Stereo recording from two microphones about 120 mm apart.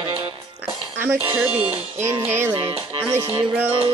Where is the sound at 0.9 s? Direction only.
15° right (ahead or behind).